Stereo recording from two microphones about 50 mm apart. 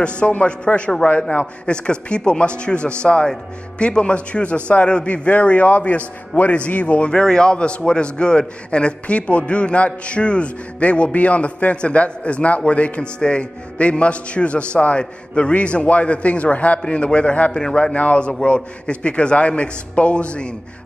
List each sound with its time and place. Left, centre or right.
0.3 s a man's voice: left; by 17.9 s centre
17.9 s a man's voice: left